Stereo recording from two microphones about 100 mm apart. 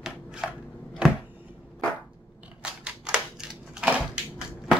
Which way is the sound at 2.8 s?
10° right (ahead or behind).